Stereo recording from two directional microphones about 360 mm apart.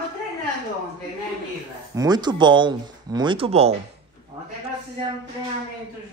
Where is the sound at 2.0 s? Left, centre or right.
Centre.